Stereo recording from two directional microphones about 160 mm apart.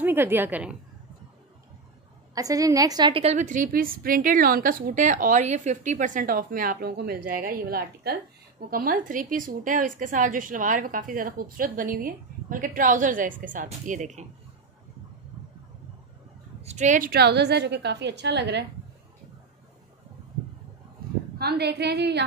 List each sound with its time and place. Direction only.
0.0 s a woman's voice: 15° right (ahead or behind)
2.3 s a woman's voice: 20° right (ahead or behind); by 14.2 s 50° right (ahead or behind)
16.6 s a woman's voice: 50° right (ahead or behind)
17.1 s a woman's voice: 90° right
21.4 s a woman's voice: 85° right